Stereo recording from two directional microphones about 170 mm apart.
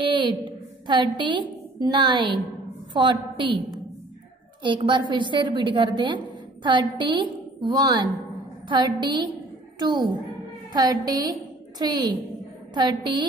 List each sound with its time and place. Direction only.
0.0 s a woman's voice: 25° right (ahead or behind)
4.6 s a woman's voice: 30° right (ahead or behind)